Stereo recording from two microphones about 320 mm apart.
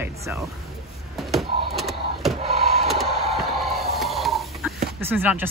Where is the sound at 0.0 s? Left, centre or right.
Centre.